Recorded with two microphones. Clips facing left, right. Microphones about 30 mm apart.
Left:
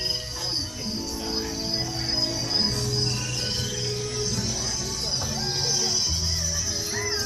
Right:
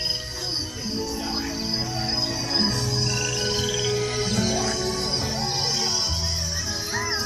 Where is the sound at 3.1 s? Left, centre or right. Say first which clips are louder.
Right 4 dB; right.